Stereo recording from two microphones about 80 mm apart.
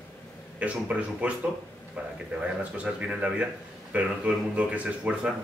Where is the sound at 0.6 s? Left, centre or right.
Centre.